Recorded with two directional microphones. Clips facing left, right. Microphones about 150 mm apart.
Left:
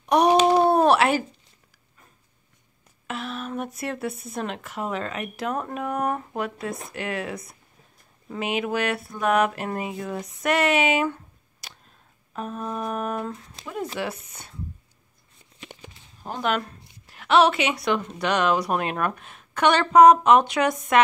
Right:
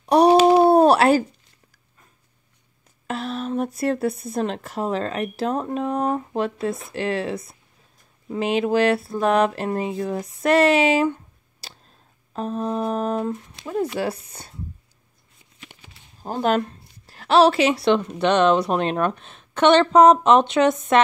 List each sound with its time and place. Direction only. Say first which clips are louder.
0.1 s a sound: right 4 dB; 35° right (ahead or behind)
3.1 s speech: right 5 dB; 35° right (ahead or behind)
11.6 s tick-tock: right 2 dB; 30° right (ahead or behind)
12.3 s a woman's voice: right 6 dB; 30° right (ahead or behind)
16.2 s a woman's voice: right 5 dB; 35° right (ahead or behind)